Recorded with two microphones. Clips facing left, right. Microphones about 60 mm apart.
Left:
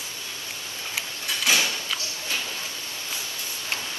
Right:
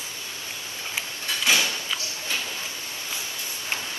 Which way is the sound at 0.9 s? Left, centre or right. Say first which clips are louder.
Even; right.